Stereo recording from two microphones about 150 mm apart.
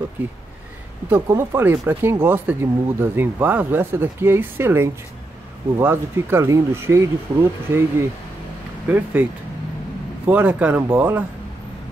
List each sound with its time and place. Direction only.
1.0 s speech: 15° right (ahead or behind)
10.2 s speech: 10° right (ahead or behind)